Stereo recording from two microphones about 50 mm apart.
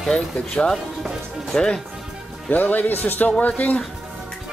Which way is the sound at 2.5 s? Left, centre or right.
Left.